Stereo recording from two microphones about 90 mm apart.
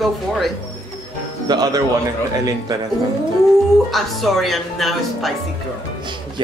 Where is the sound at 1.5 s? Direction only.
50° right (ahead or behind).